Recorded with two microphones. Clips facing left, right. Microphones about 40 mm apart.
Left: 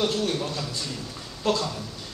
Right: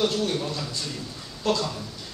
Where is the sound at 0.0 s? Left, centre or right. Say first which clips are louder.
Right 1 dB; centre.